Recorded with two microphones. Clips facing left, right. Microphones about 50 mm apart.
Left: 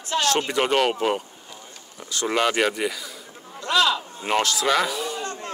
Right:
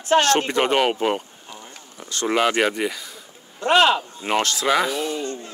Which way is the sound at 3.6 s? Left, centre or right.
Right.